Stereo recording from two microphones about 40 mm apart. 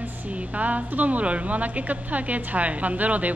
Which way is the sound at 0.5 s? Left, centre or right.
Right.